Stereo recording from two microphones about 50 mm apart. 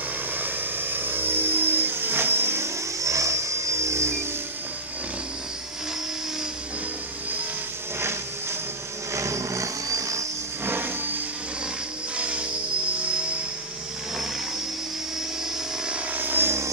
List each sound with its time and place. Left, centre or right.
0.4 s vehicle: right
8.0 s music: right
9.1 s a sound: right
10.6 s a sound: right
12.2 s music: right
16.2 s vehicle: right